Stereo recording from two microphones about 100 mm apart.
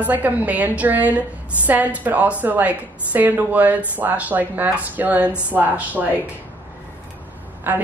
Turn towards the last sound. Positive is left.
turn(degrees=-20)  # may be behind; listen again after turning